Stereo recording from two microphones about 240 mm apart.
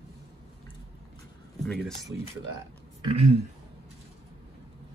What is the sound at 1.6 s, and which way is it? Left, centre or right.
Speech, centre.